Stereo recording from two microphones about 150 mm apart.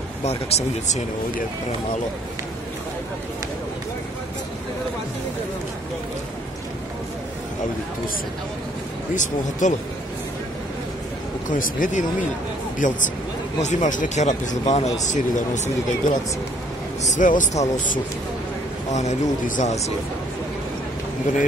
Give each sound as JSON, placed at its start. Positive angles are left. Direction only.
{"t": 0.2, "sound": "speech", "side_deg": 45}
{"t": 9.1, "sound": "speech", "side_deg": 55}
{"t": 11.4, "sound": "speech", "side_deg": 60}